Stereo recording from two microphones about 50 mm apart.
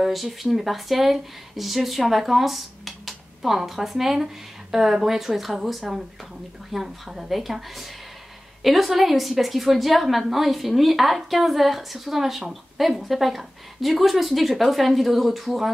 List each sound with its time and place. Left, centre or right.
0.0 s a woman's voice: centre